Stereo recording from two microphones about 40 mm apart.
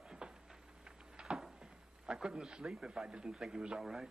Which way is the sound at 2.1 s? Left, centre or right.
Right.